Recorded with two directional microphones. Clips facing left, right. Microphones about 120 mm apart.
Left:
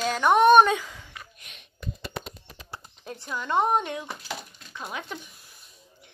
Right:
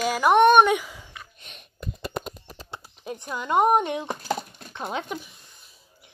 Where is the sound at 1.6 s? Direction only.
45° right (ahead or behind).